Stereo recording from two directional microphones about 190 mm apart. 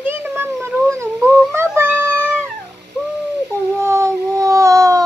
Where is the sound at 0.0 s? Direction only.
10° right (ahead or behind).